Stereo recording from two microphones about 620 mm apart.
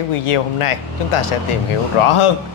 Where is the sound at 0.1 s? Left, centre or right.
Left.